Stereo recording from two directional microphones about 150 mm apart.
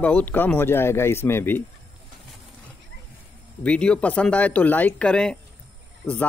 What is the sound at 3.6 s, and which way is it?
Speech, 5° left (ahead or behind).